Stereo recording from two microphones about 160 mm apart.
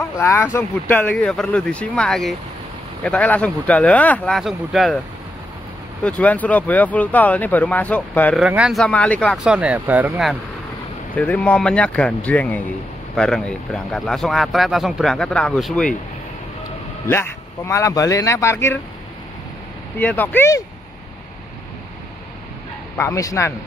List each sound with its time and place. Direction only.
0.0 s speech: 15° left (ahead or behind)
6.0 s speech: 10° left (ahead or behind)
8.4 s speech: 5° right (ahead or behind)
8.8 s speech: 10° left (ahead or behind)
9.5 s speech: 5° right (ahead or behind)
11.1 s speech: 10° left (ahead or behind)
17.1 s speech: 15° left (ahead or behind)
20.0 s speech: 10° left (ahead or behind)
22.9 s speech: 20° left (ahead or behind)